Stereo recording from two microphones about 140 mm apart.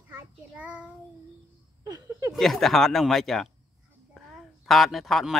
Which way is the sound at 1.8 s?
25° right (ahead or behind).